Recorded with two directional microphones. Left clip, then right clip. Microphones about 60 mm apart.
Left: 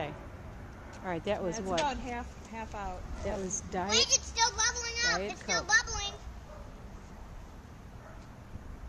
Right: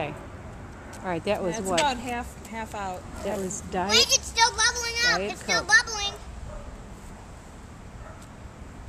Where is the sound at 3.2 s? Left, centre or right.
Centre.